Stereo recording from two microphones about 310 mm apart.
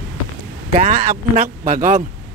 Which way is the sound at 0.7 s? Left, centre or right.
Right.